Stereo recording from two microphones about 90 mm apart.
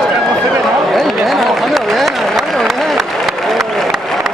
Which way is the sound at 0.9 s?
Centre (ahead or behind).